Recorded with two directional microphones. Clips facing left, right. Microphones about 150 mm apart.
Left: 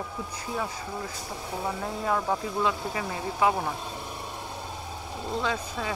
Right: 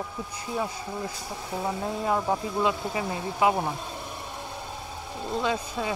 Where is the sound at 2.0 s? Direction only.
15° right (ahead or behind).